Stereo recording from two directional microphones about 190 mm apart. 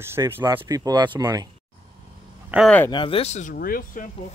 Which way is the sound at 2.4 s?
5° right (ahead or behind).